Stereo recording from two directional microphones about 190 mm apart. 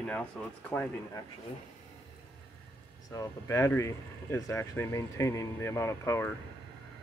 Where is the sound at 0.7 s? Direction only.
10° left (ahead or behind).